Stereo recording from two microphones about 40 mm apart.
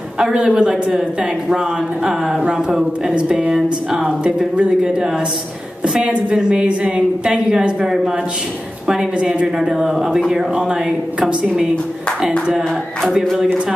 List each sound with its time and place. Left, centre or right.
0.3 s a woman's voice: right
3.2 s a woman's voice: right
4.6 s a woman's voice: right
5.9 s a woman's voice: right
9.8 s a woman's voice: centre
11.1 s a woman's voice: right
13.2 s speech: centre